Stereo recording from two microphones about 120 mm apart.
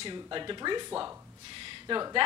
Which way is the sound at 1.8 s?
40° right (ahead or behind).